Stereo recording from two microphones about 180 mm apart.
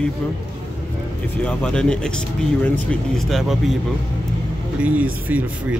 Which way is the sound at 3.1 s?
Centre (ahead or behind).